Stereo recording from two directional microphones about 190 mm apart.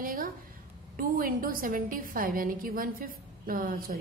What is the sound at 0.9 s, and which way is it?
A woman's voice, 45° right (ahead or behind).